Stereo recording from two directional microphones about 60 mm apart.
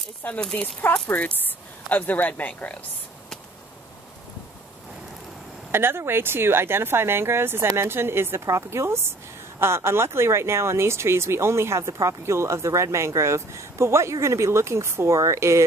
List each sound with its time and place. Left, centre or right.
0.4 s a woman's voice: centre
5.7 s speech: right
8.5 s speech: right